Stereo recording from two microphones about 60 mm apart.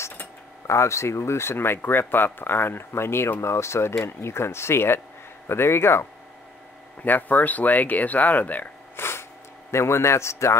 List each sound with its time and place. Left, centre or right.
0.7 s speech: left
7.0 s speech: left
8.9 s snort: left
9.7 s speech: left